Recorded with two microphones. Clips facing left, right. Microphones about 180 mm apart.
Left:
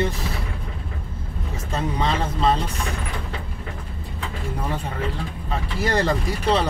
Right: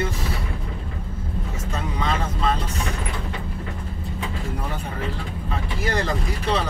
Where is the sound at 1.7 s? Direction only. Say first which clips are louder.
Left 3 dB; 30° left (ahead or behind).